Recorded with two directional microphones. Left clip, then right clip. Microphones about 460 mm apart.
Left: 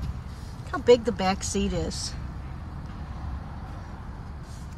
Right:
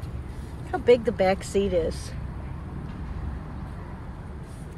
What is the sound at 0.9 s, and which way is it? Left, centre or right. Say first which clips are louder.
Speech: right 1 dB; centre.